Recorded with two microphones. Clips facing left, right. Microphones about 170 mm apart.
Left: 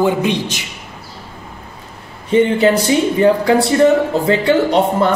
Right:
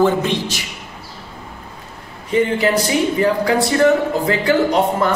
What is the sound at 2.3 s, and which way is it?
Speech, 25° left (ahead or behind).